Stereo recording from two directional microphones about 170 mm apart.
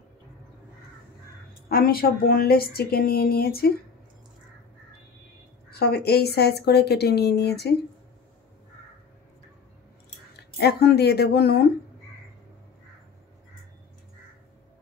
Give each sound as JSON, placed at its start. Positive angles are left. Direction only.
{"t": 1.7, "sound": "speech", "side_deg": 60}
{"t": 5.7, "sound": "a woman's voice", "side_deg": 70}
{"t": 10.6, "sound": "a woman's voice", "side_deg": 70}